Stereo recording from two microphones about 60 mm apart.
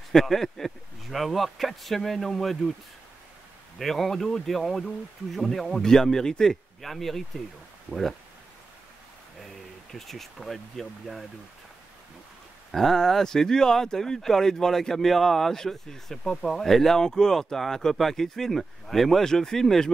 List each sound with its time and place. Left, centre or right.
0.1 s speech: centre
3.7 s speech: centre
7.9 s speech: right
9.9 s speech: centre
12.7 s speech: centre